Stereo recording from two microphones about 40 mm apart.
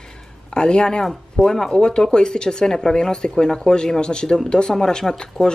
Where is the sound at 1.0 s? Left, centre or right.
Centre.